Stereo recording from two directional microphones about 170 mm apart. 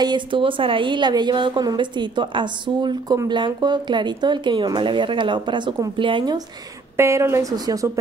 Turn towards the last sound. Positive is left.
turn(degrees=-20)  # may be behind; listen again after turning